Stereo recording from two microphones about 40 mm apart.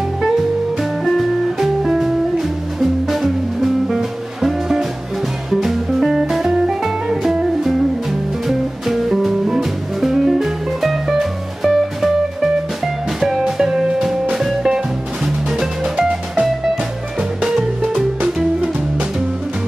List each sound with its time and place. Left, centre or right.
1.9 s music: centre
18.6 s music: right